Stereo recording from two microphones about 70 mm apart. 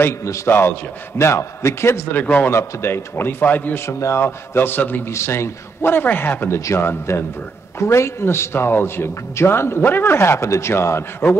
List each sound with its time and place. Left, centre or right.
0.5 s a man's voice: left
2.1 s a man's voice: left
2.5 s a man's voice: left
3.8 s a man's voice: left
5.1 s a man's voice: left
6.5 s a man's voice: left